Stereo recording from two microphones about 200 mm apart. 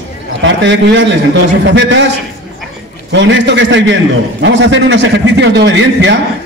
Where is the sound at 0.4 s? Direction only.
65° right (ahead or behind).